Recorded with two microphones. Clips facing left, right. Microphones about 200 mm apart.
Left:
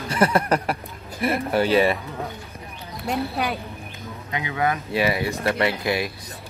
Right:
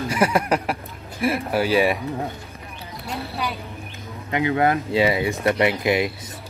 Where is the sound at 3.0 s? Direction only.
50° left (ahead or behind).